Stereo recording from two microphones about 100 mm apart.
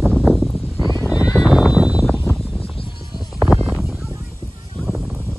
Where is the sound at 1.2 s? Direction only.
5° right (ahead or behind).